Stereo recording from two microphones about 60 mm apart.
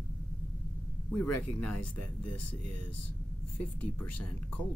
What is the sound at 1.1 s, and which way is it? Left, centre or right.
Speech, left.